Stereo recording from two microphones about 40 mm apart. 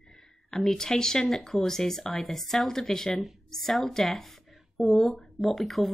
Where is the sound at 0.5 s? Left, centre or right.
Centre.